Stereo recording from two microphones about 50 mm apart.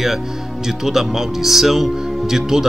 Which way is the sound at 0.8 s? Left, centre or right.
Centre.